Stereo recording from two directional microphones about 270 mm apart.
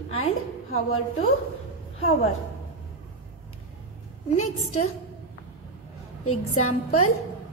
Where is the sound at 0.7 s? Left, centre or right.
Left.